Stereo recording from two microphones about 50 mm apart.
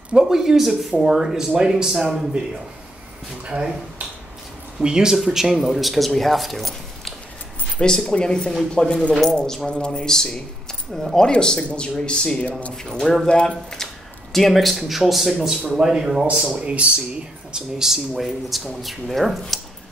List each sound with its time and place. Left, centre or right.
0.1 s speech: centre
4.7 s speech: centre
7.8 s speech: centre
12.7 s speech: centre
13.3 s speech: centre
14.3 s speech: centre
16.5 s speech: right; by 19.6 s centre